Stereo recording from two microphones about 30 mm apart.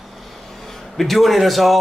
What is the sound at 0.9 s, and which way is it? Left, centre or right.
Speech, centre.